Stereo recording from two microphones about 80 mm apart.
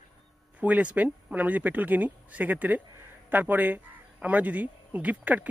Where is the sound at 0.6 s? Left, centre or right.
Centre.